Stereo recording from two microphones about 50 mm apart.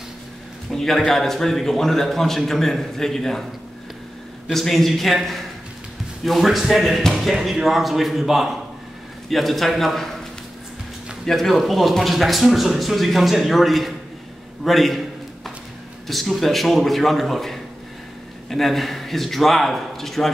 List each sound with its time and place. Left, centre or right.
0.7 s a man's voice: centre
4.5 s speech: centre
11.2 s speech: centre
14.6 s a sound: centre
16.1 s speech: centre